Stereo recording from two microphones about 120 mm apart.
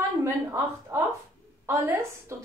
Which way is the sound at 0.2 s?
25° right (ahead or behind).